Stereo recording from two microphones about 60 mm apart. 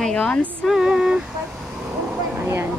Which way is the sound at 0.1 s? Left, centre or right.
Left.